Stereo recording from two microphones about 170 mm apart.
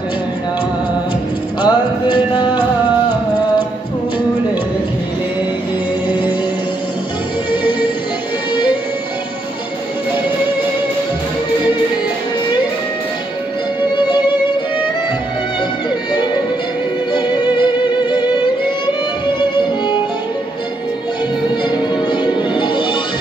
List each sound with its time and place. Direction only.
1.6 s music: 25° left (ahead or behind)
6.0 s music: 10° right (ahead or behind)
13.9 s music: 25° left (ahead or behind)
17.1 s music: 25° left (ahead or behind)
21.6 s music: 25° left (ahead or behind)